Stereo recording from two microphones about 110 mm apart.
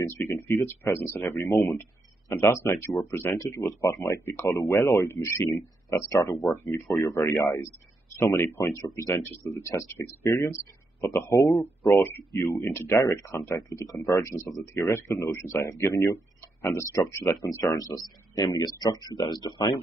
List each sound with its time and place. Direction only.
0.1 s speech: 20° left (ahead or behind)
17.7 s speech: 35° left (ahead or behind)